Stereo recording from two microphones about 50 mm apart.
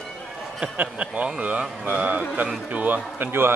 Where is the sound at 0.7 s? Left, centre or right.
Right.